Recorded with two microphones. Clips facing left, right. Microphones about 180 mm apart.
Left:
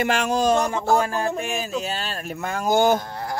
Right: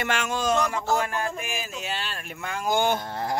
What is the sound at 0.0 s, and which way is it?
Speech, 35° left (ahead or behind).